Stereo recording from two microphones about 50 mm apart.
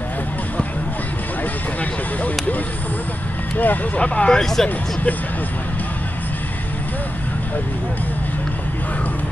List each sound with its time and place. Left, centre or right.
3.5 s speech: left
4.0 s speech: left
4.4 s speech: centre